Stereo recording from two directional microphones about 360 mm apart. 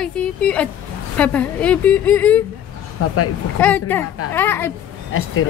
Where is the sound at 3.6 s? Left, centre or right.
Centre.